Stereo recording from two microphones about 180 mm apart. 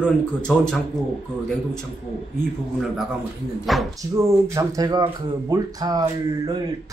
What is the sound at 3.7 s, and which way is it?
Speech, centre (ahead or behind).